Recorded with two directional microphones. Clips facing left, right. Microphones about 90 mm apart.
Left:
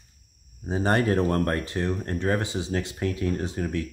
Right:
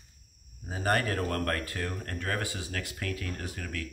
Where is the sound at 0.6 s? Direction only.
25° left (ahead or behind).